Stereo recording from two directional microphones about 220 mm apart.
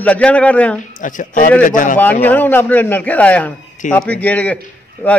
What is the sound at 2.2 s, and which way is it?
A man's voice, 10° left (ahead or behind).